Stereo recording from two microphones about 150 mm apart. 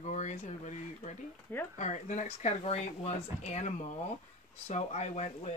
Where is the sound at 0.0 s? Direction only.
50° left (ahead or behind).